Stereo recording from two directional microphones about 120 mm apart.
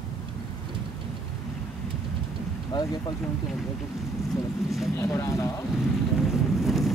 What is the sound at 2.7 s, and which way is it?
Speech, 35° left (ahead or behind).